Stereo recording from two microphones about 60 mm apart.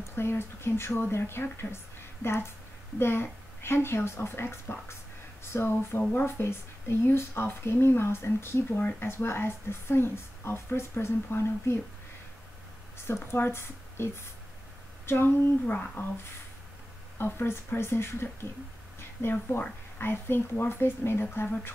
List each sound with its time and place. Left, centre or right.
0.0 s a woman's voice: left
12.9 s speech: left
15.6 s speech: left
17.2 s a woman's voice: left
20.0 s speech: left